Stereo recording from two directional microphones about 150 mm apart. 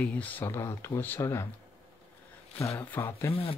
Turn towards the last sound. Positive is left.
turn(degrees=15)  # may be behind; listen again after turning